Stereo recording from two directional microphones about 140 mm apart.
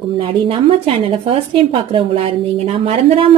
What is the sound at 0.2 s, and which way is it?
A woman's voice, 40° right (ahead or behind).